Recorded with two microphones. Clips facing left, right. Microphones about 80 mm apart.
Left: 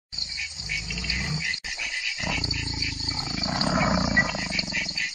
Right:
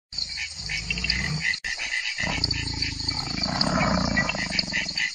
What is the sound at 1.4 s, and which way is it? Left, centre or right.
Dog, right.